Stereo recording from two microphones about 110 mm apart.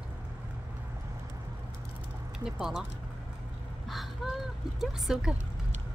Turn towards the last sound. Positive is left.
turn(degrees=-5)  # may be behind; listen again after turning